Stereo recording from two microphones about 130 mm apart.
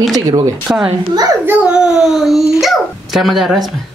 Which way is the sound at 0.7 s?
10° right (ahead or behind).